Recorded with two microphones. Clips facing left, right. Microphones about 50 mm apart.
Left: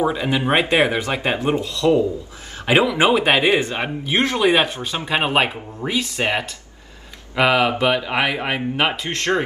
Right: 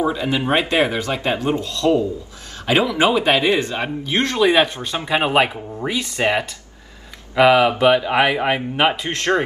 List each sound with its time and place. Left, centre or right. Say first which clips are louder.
0.0 s speech: even; left
5.0 s speech: right 2 dB; centre
7.3 s speech: right 4 dB; centre